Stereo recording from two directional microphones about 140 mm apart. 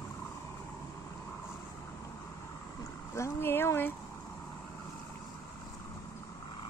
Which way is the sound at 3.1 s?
20° left (ahead or behind).